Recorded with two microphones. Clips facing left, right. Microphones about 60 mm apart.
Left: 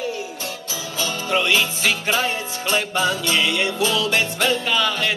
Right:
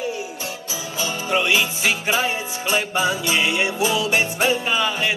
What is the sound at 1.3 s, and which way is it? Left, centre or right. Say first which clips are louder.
Music: even; centre.